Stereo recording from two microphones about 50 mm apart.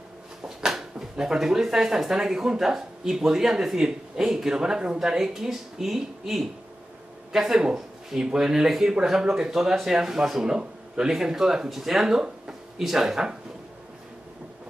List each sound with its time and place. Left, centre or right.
0.4 s speech: centre